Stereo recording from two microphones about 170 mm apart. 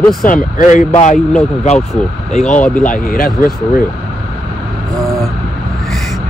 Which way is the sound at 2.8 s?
55° left (ahead or behind).